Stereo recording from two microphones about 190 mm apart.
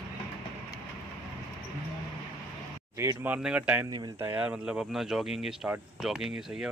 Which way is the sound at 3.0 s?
15° right (ahead or behind).